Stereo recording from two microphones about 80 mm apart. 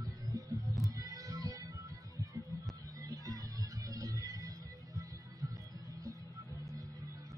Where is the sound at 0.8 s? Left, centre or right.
Right.